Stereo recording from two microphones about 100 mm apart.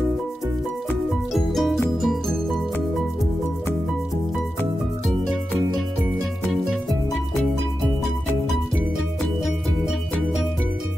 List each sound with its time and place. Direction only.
1.3 s music: centre (ahead or behind)